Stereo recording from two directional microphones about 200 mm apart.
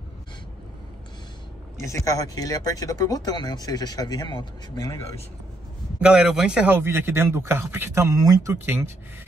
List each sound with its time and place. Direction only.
1.8 s speech: 15° left (ahead or behind)
5.9 s a man's voice: 5° right (ahead or behind)